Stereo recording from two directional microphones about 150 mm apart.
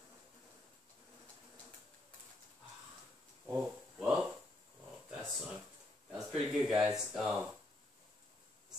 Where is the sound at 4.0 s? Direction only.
5° right (ahead or behind).